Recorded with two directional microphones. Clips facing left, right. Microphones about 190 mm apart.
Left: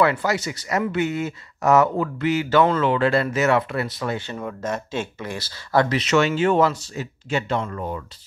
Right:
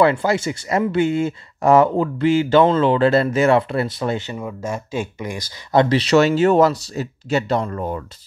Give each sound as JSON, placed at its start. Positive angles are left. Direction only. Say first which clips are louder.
{"t": 0.0, "sound": "speech", "louder": "right 4 dB", "side_deg": -30}
{"t": 4.3, "sound": "speech", "louder": "right 1 dB", "side_deg": -10}